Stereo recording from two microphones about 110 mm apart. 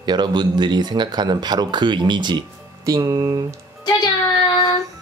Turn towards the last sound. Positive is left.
turn(degrees=45)  # may be behind; listen again after turning